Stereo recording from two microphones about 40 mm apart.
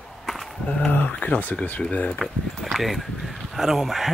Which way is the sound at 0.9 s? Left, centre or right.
Left.